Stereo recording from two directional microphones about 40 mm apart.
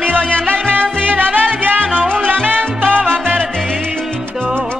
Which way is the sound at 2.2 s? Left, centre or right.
Right.